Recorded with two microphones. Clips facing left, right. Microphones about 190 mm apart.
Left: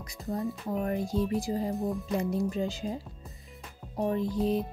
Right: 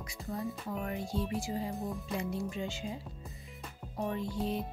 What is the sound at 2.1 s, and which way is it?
Speech, 40° left (ahead or behind).